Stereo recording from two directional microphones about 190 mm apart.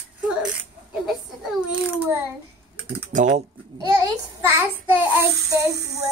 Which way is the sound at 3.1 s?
40° right (ahead or behind).